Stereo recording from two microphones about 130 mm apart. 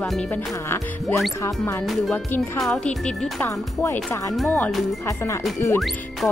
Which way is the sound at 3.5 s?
20° left (ahead or behind).